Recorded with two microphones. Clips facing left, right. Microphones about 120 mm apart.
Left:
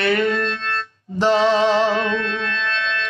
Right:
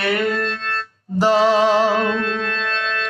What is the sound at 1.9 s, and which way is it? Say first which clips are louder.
Music: right 2 dB; 40° right (ahead or behind).